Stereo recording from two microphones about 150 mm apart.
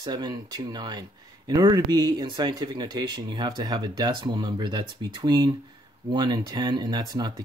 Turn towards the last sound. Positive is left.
turn(degrees=-30)  # may be behind; listen again after turning